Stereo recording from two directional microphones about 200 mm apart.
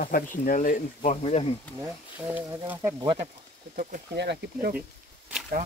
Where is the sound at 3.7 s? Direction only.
50° right (ahead or behind).